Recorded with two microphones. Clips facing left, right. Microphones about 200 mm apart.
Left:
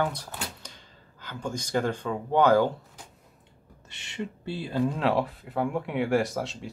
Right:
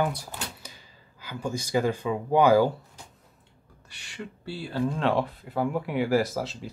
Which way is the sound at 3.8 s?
25° left (ahead or behind).